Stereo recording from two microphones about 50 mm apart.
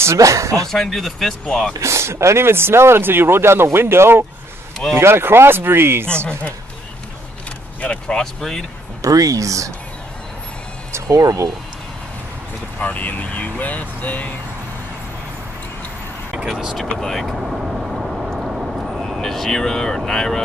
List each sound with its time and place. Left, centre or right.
0.0 s speech: right
0.7 s speech: centre
1.7 s speech: right
6.0 s speech: left
7.8 s speech: centre
9.0 s speech: right
12.8 s speech: left
16.4 s speech: centre
16.7 s speech: centre
17.4 s vehicle: centre
18.9 s speech: centre